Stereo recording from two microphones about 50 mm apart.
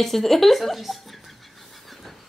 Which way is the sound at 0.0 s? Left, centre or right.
Centre.